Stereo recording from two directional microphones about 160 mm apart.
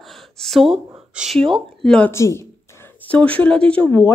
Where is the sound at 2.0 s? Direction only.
15° left (ahead or behind).